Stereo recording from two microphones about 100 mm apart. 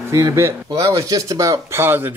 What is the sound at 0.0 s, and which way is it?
Speech, 30° right (ahead or behind).